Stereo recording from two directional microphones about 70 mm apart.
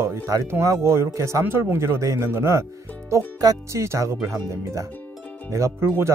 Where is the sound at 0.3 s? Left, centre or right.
Right.